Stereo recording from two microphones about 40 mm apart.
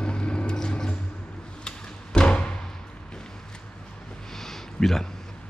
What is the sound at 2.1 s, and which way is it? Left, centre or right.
Music, centre.